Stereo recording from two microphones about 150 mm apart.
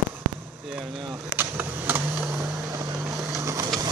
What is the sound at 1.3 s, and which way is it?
Speech, 10° right (ahead or behind).